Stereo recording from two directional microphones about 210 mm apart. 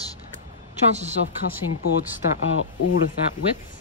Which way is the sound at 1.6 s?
90° left.